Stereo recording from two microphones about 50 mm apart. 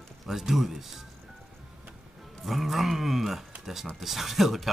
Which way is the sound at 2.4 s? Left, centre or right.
Centre.